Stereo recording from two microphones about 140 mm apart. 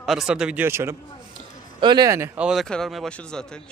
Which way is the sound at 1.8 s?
30° right (ahead or behind).